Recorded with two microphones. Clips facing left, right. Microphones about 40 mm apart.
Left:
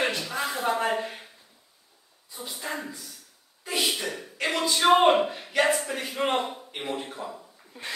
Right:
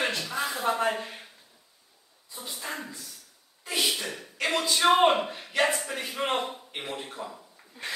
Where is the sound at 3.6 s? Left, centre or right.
Centre.